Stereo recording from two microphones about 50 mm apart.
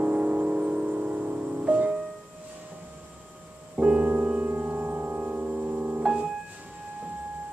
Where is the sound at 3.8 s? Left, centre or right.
Right.